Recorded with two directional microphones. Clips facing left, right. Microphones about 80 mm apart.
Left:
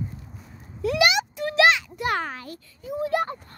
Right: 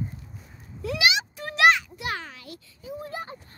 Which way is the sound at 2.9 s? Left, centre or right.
Left.